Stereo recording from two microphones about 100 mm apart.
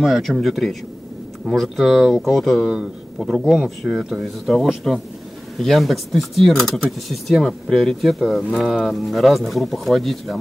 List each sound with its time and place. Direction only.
0.0 s speech: centre (ahead or behind)